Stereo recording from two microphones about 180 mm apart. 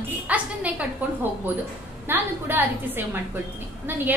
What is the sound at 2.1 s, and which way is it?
A woman's voice, 10° right (ahead or behind).